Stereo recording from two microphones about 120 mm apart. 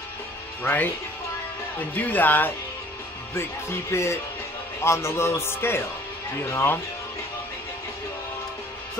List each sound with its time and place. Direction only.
0.6 s speech: 15° left (ahead or behind)
2.0 s speech: 15° left (ahead or behind)